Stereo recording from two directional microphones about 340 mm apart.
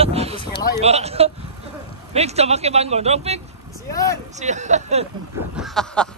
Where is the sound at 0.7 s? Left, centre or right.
Centre.